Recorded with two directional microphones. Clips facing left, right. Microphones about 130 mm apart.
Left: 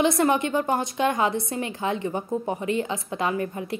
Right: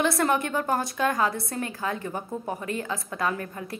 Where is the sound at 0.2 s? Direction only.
15° left (ahead or behind).